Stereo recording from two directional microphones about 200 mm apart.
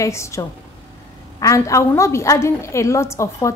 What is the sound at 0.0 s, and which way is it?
A woman's voice, 15° left (ahead or behind).